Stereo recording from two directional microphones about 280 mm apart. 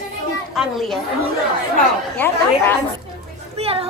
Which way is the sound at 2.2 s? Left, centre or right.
Centre.